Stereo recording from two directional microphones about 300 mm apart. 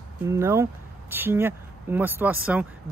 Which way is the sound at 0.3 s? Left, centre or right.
Centre.